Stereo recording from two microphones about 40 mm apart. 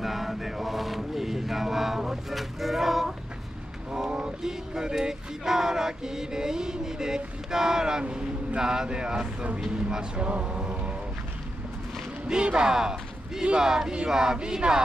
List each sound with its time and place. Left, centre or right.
0.0 s a sound: centre
4.4 s male singing: centre
7.5 s speech: centre
12.3 s speech: right